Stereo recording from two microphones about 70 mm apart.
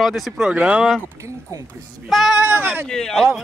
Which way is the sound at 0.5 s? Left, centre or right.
Centre.